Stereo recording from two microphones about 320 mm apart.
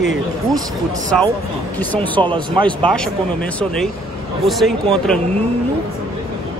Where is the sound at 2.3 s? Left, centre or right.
Centre.